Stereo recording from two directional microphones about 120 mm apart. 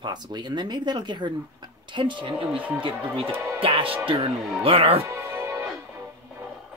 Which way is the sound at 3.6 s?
50° right (ahead or behind).